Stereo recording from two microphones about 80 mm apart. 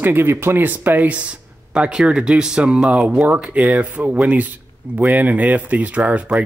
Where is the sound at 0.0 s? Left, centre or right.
Right.